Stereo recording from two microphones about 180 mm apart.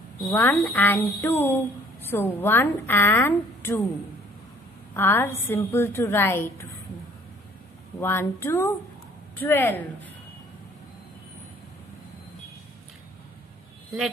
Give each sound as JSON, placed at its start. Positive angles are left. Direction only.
{"t": 0.3, "sound": "speech", "side_deg": 10}
{"t": 4.9, "sound": "speech", "side_deg": 10}
{"t": 8.0, "sound": "speech", "side_deg": 15}